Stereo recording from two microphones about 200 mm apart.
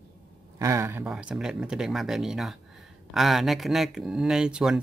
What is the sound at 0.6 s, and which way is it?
Speech, 15° right (ahead or behind).